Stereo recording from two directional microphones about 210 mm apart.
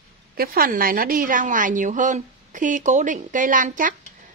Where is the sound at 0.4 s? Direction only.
45° right (ahead or behind).